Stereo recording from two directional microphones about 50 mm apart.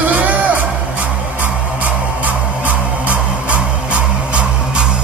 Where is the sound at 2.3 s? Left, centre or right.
Right.